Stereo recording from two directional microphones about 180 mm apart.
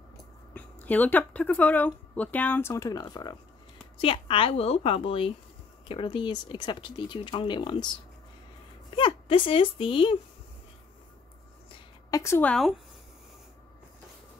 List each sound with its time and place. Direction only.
0.6 s a woman's voice: 10° left (ahead or behind); by 10.1 s 30° left (ahead or behind)
12.1 s speech: 15° left (ahead or behind)